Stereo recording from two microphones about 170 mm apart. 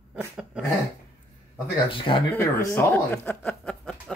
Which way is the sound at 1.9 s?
30° left (ahead or behind).